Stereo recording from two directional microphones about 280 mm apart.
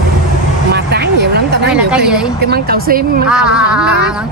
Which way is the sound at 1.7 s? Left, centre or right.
Centre.